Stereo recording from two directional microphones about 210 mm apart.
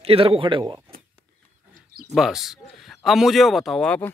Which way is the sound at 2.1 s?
Centre (ahead or behind).